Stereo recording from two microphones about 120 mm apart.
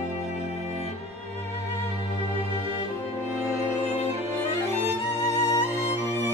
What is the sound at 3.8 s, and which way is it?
Music, 65° left (ahead or behind).